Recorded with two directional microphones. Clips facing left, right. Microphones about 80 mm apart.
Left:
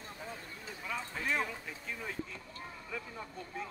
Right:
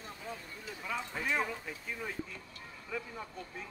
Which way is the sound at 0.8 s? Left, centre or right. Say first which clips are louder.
Right 1 dB; centre.